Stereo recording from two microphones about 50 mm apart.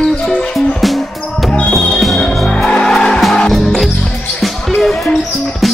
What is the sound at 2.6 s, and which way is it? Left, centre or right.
Music, centre.